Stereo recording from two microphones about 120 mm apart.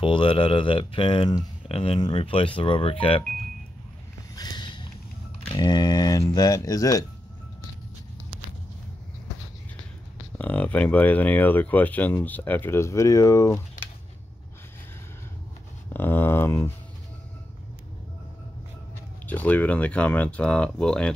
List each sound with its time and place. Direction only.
0.0 s speech: 45° left (ahead or behind)
4.4 s a sound: 40° left (ahead or behind)
5.5 s speech: 35° left (ahead or behind)
10.3 s speech: 15° left (ahead or behind)
15.9 s speech: 15° left (ahead or behind)
19.2 s speech: 15° left (ahead or behind)